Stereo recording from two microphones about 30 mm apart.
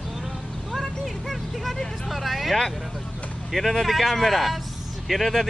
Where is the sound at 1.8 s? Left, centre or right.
Centre.